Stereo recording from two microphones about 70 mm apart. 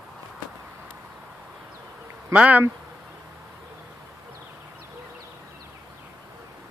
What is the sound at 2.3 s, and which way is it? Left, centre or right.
Insect, centre.